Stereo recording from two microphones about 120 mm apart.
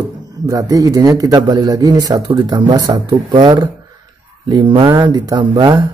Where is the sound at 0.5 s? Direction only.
30° right (ahead or behind).